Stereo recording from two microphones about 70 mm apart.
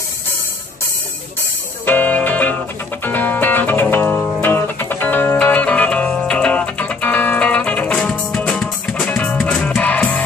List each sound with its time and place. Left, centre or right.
1.9 s music: left
9.6 s music: centre
9.8 s music: left